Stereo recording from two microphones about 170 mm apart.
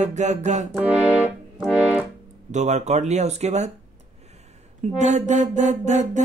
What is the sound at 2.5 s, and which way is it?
Music, 45° right (ahead or behind).